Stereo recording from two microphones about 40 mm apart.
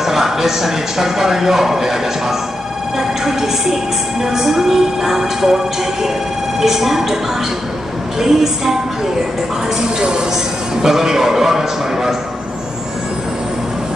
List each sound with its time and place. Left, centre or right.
0.0 s a man's voice: centre
6.6 s a man's voice: centre
8.2 s a man's voice: centre
9.8 s a man's voice: centre